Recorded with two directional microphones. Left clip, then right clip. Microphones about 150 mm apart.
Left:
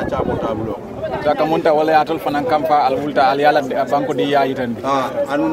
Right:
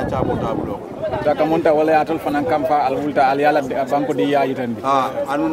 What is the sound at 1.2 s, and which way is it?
A man's voice, 55° right (ahead or behind).